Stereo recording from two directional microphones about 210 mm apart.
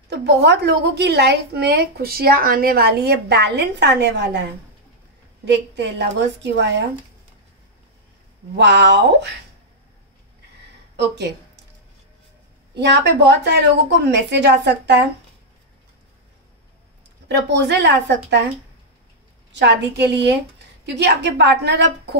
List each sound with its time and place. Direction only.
0.1 s a woman's voice: 50° right (ahead or behind)
8.5 s a woman's voice: 55° right (ahead or behind)
11.0 s a woman's voice: 55° right (ahead or behind)
12.7 s a woman's voice: 55° right (ahead or behind)
17.5 s a woman's voice: 55° right (ahead or behind)
19.5 s a woman's voice: 55° right (ahead or behind)